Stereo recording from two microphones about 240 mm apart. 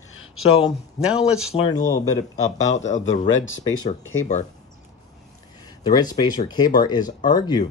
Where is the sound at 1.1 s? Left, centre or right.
Centre.